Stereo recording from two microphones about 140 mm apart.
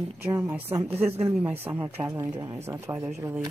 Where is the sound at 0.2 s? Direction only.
15° right (ahead or behind).